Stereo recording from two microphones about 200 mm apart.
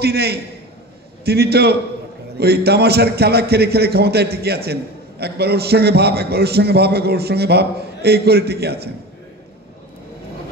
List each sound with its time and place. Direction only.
0.0 s a man's voice: 55° right (ahead or behind)